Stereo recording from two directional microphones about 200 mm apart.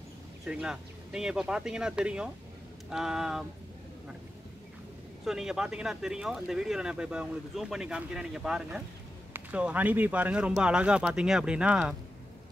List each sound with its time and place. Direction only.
0.5 s speech: 5° right (ahead or behind)
5.2 s speech: centre (ahead or behind)